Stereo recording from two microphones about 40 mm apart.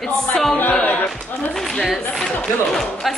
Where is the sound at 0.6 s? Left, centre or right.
Left.